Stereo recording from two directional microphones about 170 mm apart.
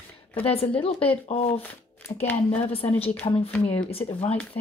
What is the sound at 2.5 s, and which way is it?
Speech, 35° left (ahead or behind).